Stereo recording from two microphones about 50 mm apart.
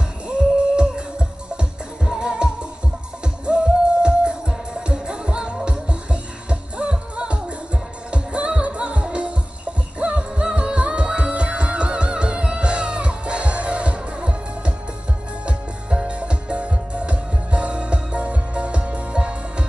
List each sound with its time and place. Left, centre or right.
0.3 s music: centre